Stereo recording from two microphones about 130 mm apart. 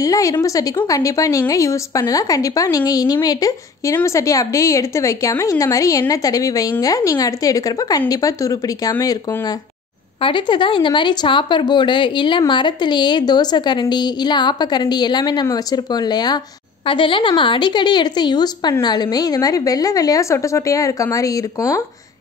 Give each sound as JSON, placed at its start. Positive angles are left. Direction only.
{"t": 0.0, "sound": "a woman's voice", "side_deg": 25}
{"t": 10.2, "sound": "a woman's voice", "side_deg": 40}